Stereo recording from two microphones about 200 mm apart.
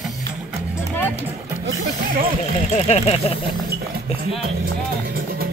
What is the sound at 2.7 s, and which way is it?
Speech, 30° left (ahead or behind).